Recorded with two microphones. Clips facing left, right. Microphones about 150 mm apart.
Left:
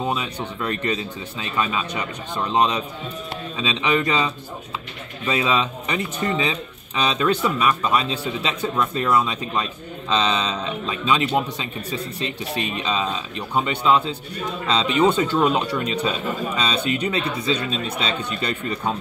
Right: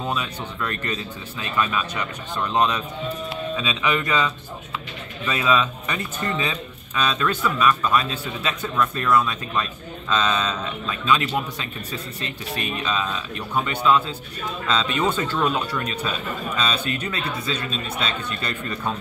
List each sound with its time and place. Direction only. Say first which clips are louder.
0.0 s speech: left 2 dB; 15° left (ahead or behind)